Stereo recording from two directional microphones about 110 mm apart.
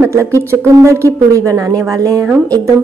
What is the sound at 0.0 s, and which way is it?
A woman's voice, 25° right (ahead or behind).